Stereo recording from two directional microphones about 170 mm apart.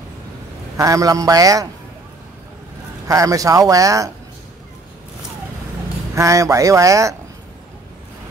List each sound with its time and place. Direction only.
0.7 s speech: 20° right (ahead or behind)
3.1 s speech: 20° right (ahead or behind)
6.1 s speech: 20° right (ahead or behind)